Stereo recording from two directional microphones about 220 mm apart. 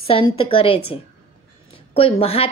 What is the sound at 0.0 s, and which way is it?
Speech, 25° left (ahead or behind).